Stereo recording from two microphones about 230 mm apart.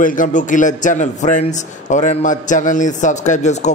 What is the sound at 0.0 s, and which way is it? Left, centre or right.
A man's voice, left.